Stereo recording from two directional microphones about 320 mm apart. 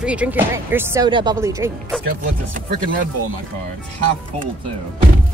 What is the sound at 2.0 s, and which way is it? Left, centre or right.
Speech, right.